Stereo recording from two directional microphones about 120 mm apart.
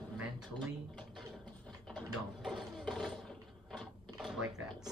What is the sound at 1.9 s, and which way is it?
Mechanisms, centre (ahead or behind).